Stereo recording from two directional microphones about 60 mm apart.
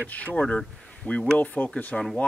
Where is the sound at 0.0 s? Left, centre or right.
Left.